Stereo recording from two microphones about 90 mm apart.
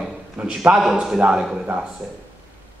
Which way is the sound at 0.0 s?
10° right (ahead or behind).